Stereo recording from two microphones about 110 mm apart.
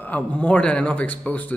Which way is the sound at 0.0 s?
15° left (ahead or behind).